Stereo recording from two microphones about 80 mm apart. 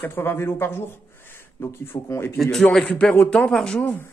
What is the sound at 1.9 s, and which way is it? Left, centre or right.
Speech, left.